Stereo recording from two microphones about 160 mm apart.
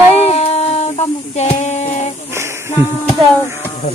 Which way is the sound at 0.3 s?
40° left (ahead or behind).